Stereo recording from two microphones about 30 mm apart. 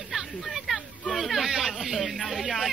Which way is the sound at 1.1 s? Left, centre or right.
Centre.